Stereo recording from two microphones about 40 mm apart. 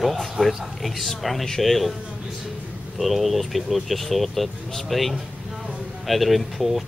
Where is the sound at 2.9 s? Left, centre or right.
Centre.